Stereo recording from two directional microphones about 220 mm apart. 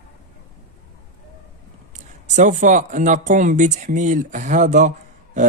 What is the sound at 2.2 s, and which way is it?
Speech, 35° right (ahead or behind).